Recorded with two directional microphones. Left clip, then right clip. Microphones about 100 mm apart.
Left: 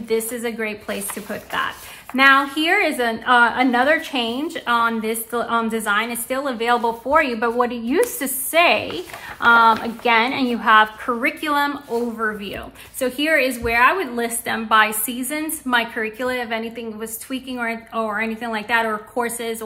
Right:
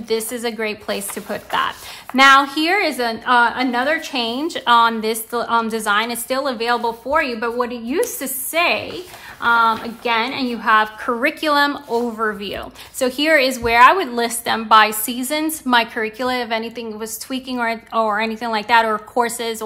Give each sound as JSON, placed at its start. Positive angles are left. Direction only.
{"t": 0.1, "sound": "speech", "side_deg": -25}
{"t": 4.2, "sound": "a woman's voice", "side_deg": -25}
{"t": 5.3, "sound": "speech", "side_deg": -25}
{"t": 6.6, "sound": "a woman's voice", "side_deg": -10}
{"t": 11.1, "sound": "a woman's voice", "side_deg": -30}